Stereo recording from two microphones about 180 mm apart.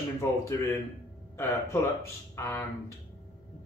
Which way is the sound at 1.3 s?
15° left (ahead or behind).